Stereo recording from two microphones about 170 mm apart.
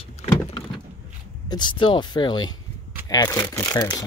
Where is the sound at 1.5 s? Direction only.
25° left (ahead or behind).